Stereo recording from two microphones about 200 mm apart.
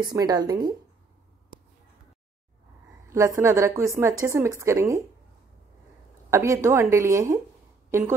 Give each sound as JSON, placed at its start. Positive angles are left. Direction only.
{"t": 0.0, "sound": "a woman's voice", "side_deg": -20}
{"t": 3.1, "sound": "speech", "side_deg": -15}
{"t": 6.3, "sound": "speech", "side_deg": -15}